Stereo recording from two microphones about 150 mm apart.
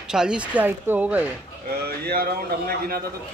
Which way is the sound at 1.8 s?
90° right.